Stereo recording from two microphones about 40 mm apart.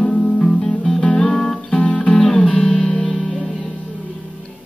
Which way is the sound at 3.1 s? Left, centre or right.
Centre.